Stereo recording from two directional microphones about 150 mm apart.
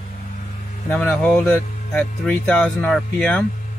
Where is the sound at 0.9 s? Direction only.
5° left (ahead or behind).